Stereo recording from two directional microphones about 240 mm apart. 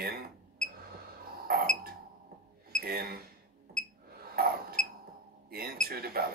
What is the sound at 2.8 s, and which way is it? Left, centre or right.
Speech, right.